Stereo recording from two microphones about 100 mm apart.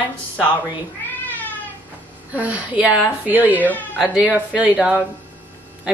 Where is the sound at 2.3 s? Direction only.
15° right (ahead or behind).